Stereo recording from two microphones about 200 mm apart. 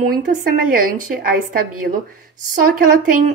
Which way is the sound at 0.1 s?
40° right (ahead or behind).